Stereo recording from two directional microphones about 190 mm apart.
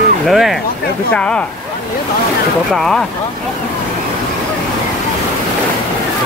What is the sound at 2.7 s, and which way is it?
Speech, 5° left (ahead or behind).